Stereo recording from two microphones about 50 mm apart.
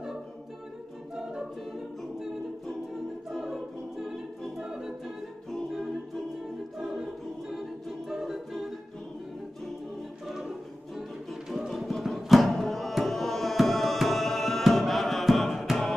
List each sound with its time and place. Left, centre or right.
3.3 s music: centre
5.7 s a capella: centre
6.8 s choir: centre
8.1 s music: centre
10.2 s music: centre